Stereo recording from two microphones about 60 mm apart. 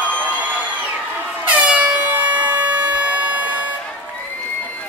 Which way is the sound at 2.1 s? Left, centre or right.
Right.